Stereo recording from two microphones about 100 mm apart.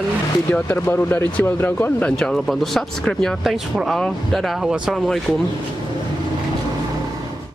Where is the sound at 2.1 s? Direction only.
5° left (ahead or behind).